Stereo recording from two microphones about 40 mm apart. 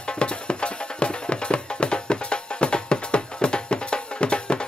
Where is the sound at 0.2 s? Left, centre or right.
Left.